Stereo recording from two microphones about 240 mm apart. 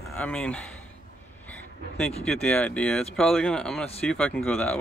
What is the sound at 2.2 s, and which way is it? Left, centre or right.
Speech, centre.